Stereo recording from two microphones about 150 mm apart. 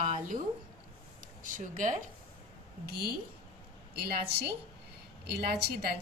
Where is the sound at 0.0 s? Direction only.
55° right (ahead or behind).